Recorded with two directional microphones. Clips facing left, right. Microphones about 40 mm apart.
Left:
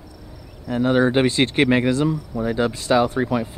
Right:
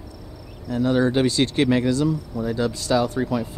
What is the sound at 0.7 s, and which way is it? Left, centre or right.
Speech, left.